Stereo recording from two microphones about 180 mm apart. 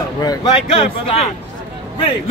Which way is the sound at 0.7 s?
30° left (ahead or behind).